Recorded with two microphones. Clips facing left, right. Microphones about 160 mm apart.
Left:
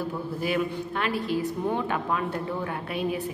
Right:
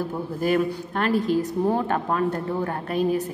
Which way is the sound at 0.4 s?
45° right (ahead or behind).